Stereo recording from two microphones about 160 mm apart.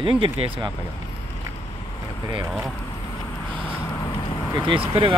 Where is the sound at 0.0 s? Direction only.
35° right (ahead or behind).